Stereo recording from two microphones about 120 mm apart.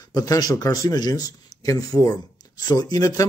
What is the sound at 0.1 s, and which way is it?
Speech, 30° left (ahead or behind).